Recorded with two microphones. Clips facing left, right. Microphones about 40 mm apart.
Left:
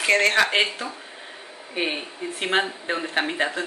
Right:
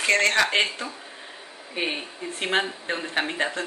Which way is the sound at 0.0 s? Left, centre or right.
Centre.